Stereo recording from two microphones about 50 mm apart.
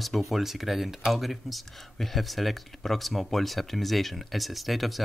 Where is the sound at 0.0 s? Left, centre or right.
Centre.